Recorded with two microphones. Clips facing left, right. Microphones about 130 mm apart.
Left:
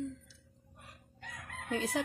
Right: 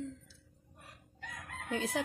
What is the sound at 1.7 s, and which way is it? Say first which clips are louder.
Chicken: left 1 dB; 40° left (ahead or behind).